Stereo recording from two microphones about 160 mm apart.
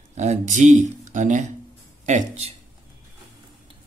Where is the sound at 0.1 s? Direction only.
45° right (ahead or behind).